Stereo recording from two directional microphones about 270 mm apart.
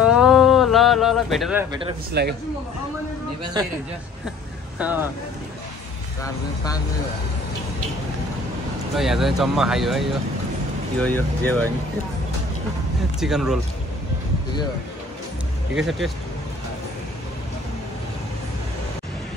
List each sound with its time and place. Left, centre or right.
0.0 s a sound: centre
2.2 s a man's voice: right
3.6 s speech: centre
4.7 s speech: centre
6.2 s speech: centre
8.9 s speech: centre
13.2 s speech: centre
15.7 s speech: centre